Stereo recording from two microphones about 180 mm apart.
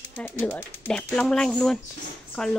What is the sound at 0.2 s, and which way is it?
A woman's voice, 10° left (ahead or behind).